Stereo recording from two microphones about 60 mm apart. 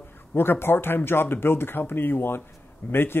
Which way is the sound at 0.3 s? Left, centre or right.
Left.